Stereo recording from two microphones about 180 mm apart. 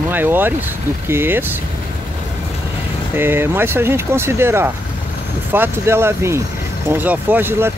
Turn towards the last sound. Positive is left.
turn(degrees=-10)  # may be behind; listen again after turning